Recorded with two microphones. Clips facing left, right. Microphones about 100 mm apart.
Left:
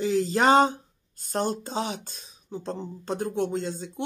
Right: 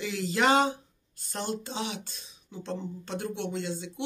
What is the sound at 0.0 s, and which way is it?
Speech, 35° left (ahead or behind).